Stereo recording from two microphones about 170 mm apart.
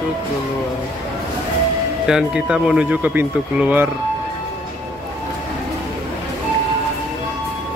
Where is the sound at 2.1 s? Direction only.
5° right (ahead or behind).